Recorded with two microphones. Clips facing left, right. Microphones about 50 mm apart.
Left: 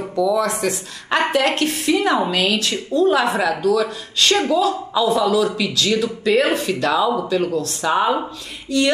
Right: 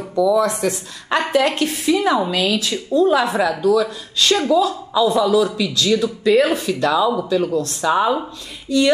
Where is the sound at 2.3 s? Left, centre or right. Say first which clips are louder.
Even; left.